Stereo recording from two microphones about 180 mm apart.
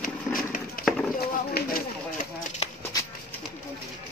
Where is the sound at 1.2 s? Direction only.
55° left (ahead or behind).